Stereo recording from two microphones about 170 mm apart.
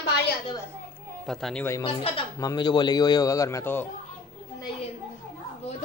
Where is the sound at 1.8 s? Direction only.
30° left (ahead or behind); by 3.9 s 10° left (ahead or behind).